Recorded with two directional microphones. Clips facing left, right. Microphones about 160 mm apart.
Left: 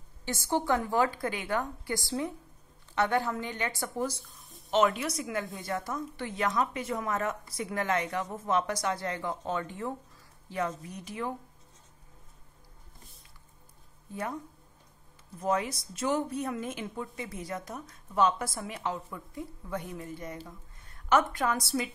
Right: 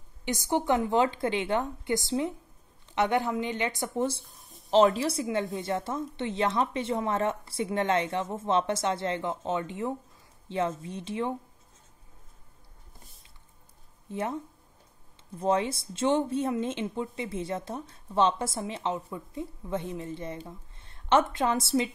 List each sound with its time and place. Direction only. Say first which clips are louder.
0.2 s speech: right 2 dB; 15° right (ahead or behind)
14.1 s speech: right 4 dB; 25° right (ahead or behind)